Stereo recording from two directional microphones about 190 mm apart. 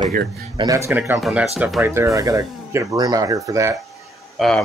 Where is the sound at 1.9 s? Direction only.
15° right (ahead or behind).